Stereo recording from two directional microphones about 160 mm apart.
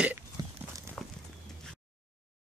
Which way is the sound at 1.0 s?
10° left (ahead or behind).